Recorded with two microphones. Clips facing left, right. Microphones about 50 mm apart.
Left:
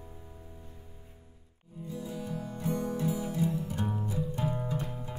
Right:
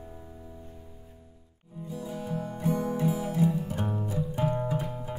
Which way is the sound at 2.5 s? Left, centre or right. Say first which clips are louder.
Right 4 dB; centre.